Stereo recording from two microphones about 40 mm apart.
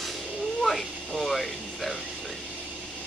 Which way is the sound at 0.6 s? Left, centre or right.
Centre.